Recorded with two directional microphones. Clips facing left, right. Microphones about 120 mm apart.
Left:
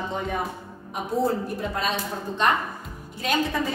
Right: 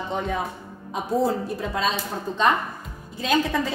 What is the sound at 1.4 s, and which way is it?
Speech, 90° right.